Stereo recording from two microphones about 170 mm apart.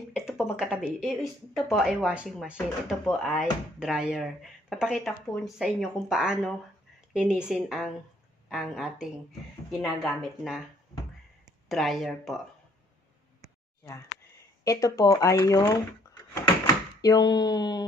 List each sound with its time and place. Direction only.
0.1 s speech: 5° right (ahead or behind)
11.7 s speech: centre (ahead or behind)
14.6 s speech: 20° left (ahead or behind)
17.0 s speech: 25° left (ahead or behind)